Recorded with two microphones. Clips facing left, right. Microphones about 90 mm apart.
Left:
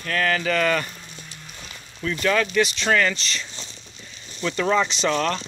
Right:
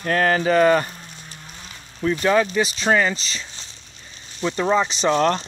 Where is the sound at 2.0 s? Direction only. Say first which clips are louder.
Right 4 dB; 30° right (ahead or behind).